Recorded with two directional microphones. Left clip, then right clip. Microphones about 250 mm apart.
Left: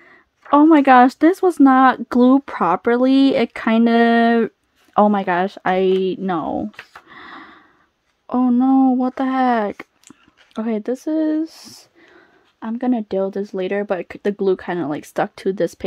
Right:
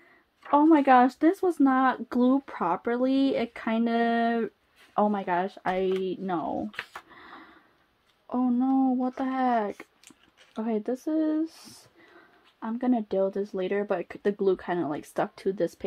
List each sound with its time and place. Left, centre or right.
0.5 s speech: left
7.1 s a sound: left
8.3 s speech: left